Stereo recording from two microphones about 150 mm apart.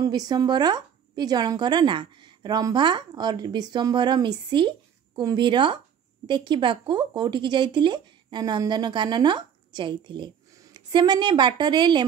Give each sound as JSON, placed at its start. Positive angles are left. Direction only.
{"t": 0.0, "sound": "speech", "side_deg": -25}